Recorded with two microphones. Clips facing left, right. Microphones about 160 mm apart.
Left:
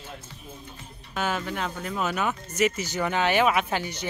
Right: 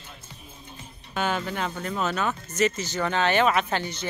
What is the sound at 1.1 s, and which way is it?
Speech, centre (ahead or behind).